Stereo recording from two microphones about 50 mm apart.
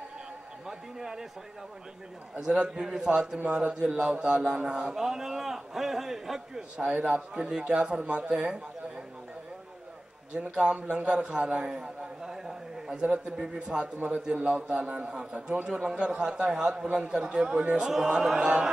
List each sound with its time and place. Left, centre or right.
0.7 s a man's voice: centre
2.4 s a man's voice: centre
7.1 s a man's voice: centre
10.5 s a man's voice: centre
11.7 s a sound: centre
13.6 s a man's voice: centre